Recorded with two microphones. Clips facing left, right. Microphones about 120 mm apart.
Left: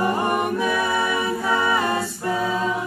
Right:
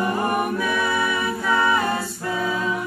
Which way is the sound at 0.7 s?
35° left (ahead or behind).